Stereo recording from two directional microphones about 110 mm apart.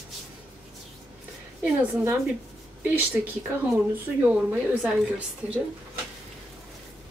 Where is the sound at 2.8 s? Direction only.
15° right (ahead or behind).